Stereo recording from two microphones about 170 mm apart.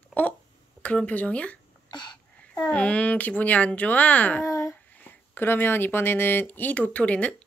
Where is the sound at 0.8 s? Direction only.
10° left (ahead or behind).